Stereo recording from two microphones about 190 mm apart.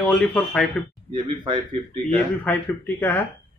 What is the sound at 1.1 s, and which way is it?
Speech, 25° right (ahead or behind).